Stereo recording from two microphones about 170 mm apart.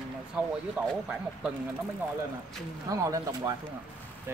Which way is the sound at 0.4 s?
10° right (ahead or behind).